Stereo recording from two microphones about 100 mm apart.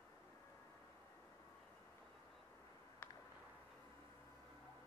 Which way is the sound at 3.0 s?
20° left (ahead or behind).